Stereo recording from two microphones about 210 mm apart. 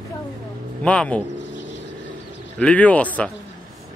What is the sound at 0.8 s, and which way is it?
Speech, 5° left (ahead or behind).